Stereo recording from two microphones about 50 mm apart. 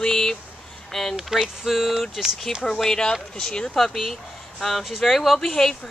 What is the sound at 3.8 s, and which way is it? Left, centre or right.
Speech, centre.